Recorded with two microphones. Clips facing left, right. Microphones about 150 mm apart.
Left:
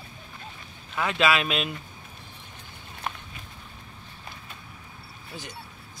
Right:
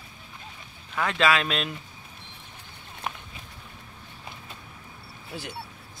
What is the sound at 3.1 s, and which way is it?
Walk, 5° right (ahead or behind).